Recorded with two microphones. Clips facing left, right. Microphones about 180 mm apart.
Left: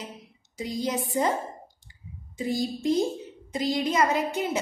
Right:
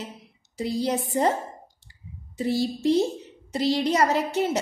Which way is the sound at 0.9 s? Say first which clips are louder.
Right 2 dB; 40° right (ahead or behind).